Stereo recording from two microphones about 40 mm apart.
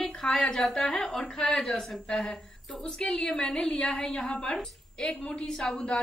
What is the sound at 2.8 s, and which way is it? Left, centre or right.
A woman's voice, centre.